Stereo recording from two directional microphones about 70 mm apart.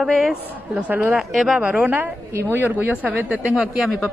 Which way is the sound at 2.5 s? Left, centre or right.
Right.